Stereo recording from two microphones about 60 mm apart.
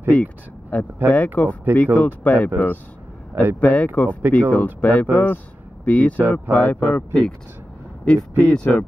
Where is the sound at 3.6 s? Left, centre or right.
Left.